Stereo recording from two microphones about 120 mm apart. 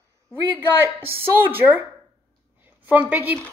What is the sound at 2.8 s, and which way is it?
Speech, 15° right (ahead or behind).